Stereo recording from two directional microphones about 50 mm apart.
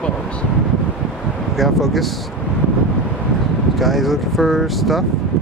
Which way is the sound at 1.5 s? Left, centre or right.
Centre.